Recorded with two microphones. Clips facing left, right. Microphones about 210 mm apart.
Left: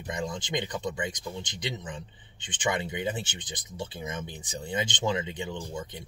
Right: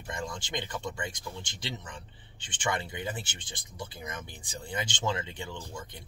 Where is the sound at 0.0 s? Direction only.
20° left (ahead or behind).